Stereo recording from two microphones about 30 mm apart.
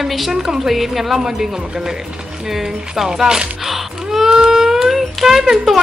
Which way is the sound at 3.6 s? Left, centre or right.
Centre.